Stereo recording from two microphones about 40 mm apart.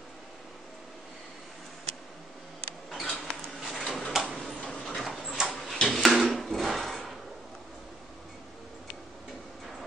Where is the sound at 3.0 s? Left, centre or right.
Centre.